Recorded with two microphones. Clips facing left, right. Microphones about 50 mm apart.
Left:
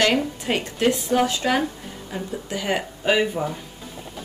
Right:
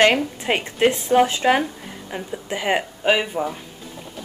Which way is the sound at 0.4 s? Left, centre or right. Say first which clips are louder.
Right 3 dB; right.